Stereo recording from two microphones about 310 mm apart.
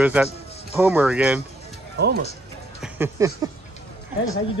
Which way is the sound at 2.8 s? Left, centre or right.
Centre.